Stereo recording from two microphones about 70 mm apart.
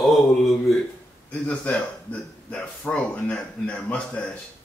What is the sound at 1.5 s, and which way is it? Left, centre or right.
Speech, centre.